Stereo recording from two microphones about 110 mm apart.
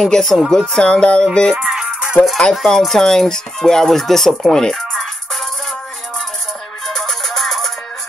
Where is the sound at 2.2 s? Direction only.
Centre (ahead or behind).